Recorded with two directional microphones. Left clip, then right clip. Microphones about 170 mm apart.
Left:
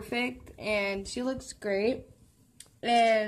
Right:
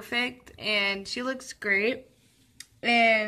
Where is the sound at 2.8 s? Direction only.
20° right (ahead or behind).